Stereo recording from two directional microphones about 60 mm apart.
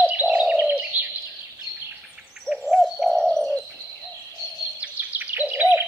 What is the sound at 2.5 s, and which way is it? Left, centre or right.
Bird, centre.